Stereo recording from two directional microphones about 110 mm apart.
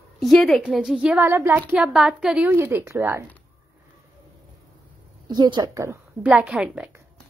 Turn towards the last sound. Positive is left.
turn(degrees=-10)  # may be behind; listen again after turning